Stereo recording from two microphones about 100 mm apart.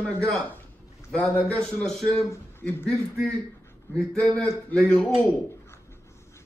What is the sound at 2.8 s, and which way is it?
Speech, 10° left (ahead or behind).